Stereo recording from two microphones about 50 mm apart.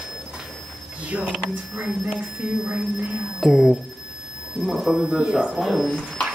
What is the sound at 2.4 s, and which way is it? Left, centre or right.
Speech, right.